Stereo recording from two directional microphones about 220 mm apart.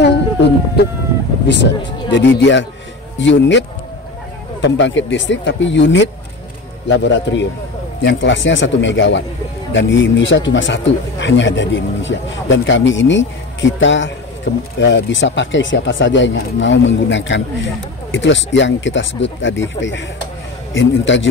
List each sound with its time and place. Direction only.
0.0 s a sound: 50° left (ahead or behind)
1.5 s speech: 55° left (ahead or behind)
20.7 s speech: 55° left (ahead or behind)